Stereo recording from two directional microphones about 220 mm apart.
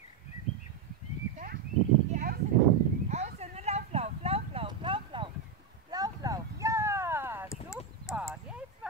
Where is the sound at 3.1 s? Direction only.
30° right (ahead or behind).